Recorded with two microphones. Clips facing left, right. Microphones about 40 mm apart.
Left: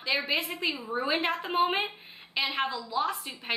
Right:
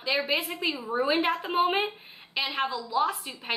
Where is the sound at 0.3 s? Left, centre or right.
Centre.